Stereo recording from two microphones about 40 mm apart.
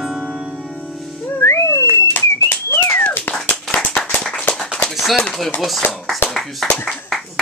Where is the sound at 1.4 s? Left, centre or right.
Left.